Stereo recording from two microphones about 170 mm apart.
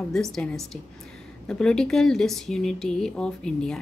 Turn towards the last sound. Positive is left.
turn(degrees=5)  # may be behind; listen again after turning